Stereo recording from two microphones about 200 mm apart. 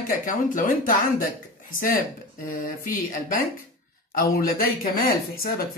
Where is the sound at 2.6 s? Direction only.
45° left (ahead or behind).